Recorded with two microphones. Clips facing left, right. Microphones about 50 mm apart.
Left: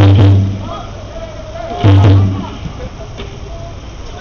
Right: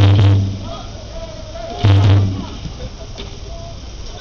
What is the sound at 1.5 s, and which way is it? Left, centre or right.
Insect, left.